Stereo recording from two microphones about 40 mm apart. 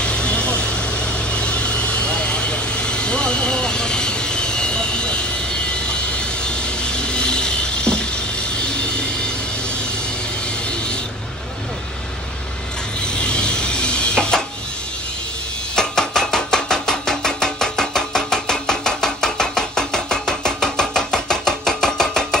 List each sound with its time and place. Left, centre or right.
0.0 s vehicle: left
13.0 s vehicle: left
15.7 s chopping: centre